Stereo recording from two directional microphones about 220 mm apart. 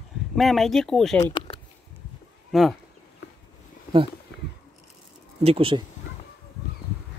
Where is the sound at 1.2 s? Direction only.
25° left (ahead or behind).